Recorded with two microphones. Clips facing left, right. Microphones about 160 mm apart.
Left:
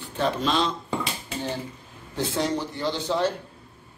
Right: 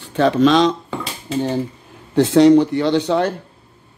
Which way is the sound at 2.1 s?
80° right.